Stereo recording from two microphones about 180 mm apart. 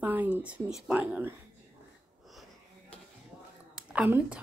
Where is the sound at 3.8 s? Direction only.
5° right (ahead or behind).